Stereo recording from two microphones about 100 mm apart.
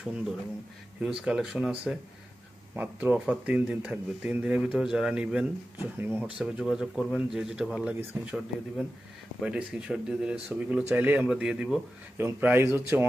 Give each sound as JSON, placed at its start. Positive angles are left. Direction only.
{"t": 1.0, "sound": "speech", "side_deg": -5}
{"t": 2.7, "sound": "speech", "side_deg": -20}
{"t": 6.3, "sound": "speech", "side_deg": -5}
{"t": 11.2, "sound": "speech", "side_deg": -5}
{"t": 12.2, "sound": "speech", "side_deg": -20}